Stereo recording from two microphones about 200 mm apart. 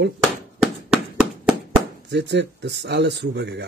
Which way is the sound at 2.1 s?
60° right (ahead or behind).